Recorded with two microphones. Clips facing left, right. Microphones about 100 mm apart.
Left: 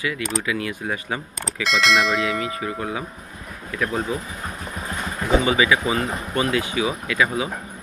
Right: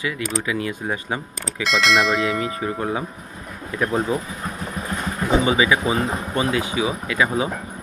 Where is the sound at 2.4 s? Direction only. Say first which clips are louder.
Right 2 dB; 30° right (ahead or behind).